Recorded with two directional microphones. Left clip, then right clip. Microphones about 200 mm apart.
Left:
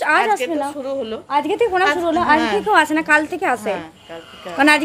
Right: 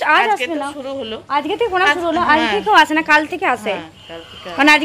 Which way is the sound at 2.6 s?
Centre (ahead or behind).